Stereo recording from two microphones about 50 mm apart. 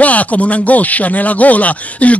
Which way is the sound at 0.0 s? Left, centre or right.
Left.